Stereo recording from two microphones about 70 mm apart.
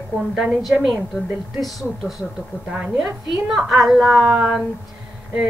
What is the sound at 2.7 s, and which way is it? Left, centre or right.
Speech, centre.